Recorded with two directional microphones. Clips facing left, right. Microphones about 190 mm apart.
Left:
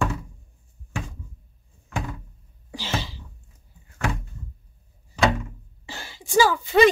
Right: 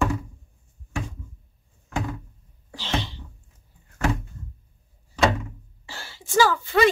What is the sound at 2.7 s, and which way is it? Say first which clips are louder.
Sneeze: right 1 dB; 5° left (ahead or behind).